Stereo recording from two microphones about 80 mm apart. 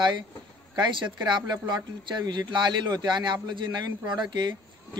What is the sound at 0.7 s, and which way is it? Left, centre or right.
A man's voice, right.